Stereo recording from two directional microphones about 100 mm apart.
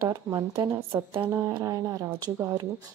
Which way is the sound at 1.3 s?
30° right (ahead or behind).